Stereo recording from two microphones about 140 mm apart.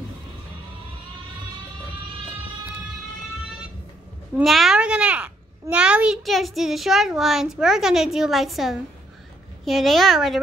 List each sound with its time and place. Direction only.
4.4 s a child's voice: centre (ahead or behind)